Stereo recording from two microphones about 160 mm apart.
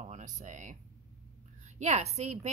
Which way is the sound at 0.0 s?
50° right (ahead or behind).